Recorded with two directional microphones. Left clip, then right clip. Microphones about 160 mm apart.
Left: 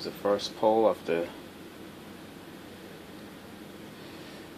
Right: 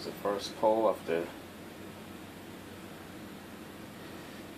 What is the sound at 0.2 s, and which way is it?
Speech, 55° left (ahead or behind).